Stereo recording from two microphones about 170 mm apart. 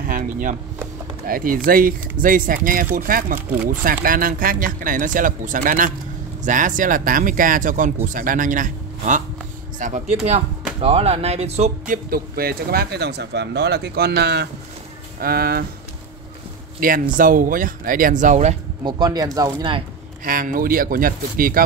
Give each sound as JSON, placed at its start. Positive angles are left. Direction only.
{"t": 0.0, "sound": "speech", "side_deg": -55}
{"t": 10.8, "sound": "speech", "side_deg": -35}
{"t": 15.1, "sound": "speech", "side_deg": -60}
{"t": 16.8, "sound": "speech", "side_deg": -55}
{"t": 18.9, "sound": "speech", "side_deg": -25}
{"t": 20.2, "sound": "speech", "side_deg": -55}